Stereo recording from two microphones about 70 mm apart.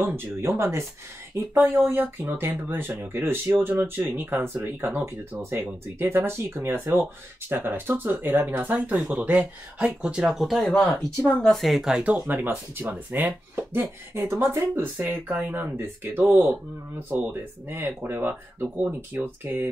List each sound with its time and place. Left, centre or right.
0.0 s speech: right; by 12.0 s centre
12.0 s speech: right